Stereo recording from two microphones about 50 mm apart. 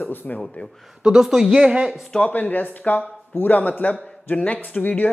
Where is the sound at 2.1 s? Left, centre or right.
Left.